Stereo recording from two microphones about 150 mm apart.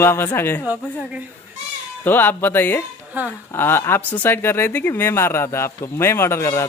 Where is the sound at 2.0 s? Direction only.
15° left (ahead or behind).